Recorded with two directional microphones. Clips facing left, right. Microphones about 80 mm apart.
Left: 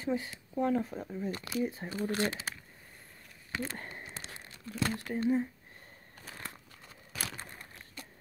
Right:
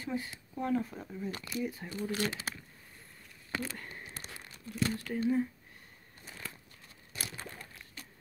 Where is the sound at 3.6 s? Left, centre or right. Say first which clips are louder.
Left 2 dB; left.